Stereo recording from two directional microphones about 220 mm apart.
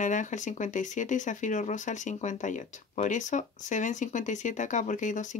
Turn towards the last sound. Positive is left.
turn(degrees=35)  # may be behind; listen again after turning